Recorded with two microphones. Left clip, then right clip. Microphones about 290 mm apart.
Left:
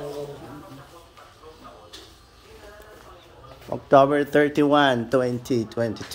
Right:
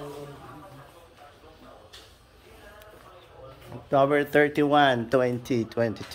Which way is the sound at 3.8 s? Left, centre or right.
Centre.